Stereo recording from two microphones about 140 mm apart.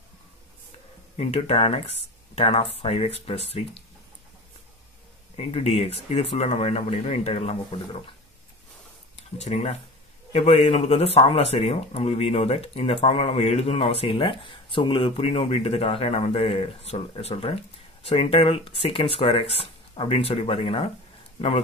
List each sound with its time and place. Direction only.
1.1 s speech: 45° left (ahead or behind)
5.3 s speech: 45° left (ahead or behind)
9.4 s speech: 50° left (ahead or behind)